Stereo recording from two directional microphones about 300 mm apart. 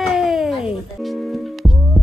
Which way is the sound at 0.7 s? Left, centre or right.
Centre.